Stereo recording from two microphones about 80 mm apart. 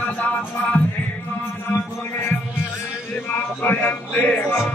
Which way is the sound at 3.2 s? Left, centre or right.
Left.